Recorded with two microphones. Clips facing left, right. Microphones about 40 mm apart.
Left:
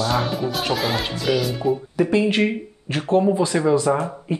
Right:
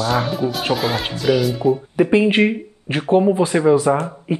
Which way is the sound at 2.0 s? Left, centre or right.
Right.